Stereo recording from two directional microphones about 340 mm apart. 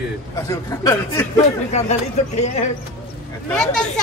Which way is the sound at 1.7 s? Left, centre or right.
Centre.